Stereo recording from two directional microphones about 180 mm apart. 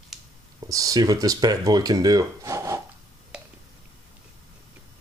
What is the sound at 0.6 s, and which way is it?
Speech, 20° right (ahead or behind).